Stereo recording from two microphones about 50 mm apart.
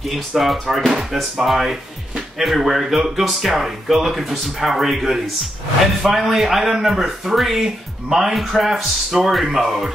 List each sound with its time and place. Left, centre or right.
0.1 s speech: centre